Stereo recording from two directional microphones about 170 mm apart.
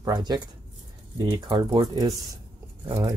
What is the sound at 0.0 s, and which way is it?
Speech, 25° right (ahead or behind).